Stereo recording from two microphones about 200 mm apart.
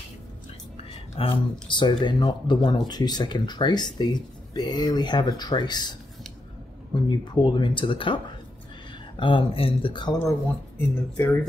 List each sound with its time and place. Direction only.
1.1 s speech: 25° left (ahead or behind)
7.1 s speech: 20° left (ahead or behind)
10.8 s speech: 10° left (ahead or behind)